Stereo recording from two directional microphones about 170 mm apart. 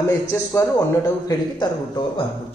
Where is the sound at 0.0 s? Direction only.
15° left (ahead or behind).